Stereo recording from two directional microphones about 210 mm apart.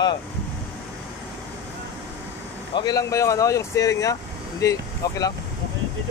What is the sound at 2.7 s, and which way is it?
Speech, 20° left (ahead or behind).